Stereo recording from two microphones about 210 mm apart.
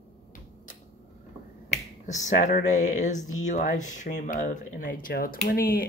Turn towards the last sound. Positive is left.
turn(degrees=45)  # may be behind; listen again after turning